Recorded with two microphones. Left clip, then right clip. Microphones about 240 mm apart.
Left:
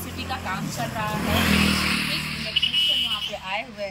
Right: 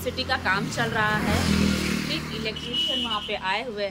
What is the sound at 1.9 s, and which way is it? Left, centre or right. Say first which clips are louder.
Vehicle: left 4 dB; centre.